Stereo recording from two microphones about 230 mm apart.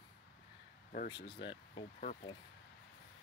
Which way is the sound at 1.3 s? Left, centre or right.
Left.